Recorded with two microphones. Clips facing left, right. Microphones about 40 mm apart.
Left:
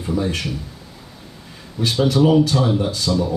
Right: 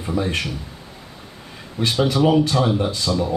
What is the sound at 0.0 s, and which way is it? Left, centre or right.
Speech, right.